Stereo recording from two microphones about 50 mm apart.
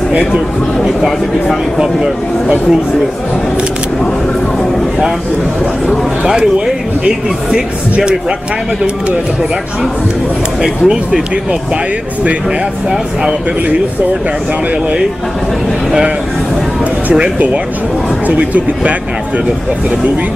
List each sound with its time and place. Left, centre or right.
0.7 s speech: centre
7.9 s speech: centre
10.6 s speech: centre
17.1 s speech: right